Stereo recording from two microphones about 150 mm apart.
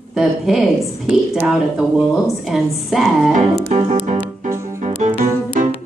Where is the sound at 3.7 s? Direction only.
40° right (ahead or behind).